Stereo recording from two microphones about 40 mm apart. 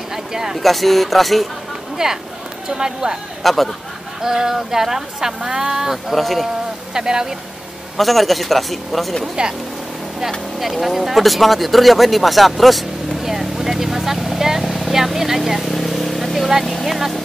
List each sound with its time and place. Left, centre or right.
0.1 s a sound: centre
0.6 s speech: centre
2.0 s speech: centre
3.4 s speech: centre
4.2 s speech: centre
6.1 s speech: centre
6.9 s speech: centre
8.0 s speech: centre
9.3 s speech: centre
10.6 s speech: centre
15.7 s vehicle: centre
16.8 s speech: centre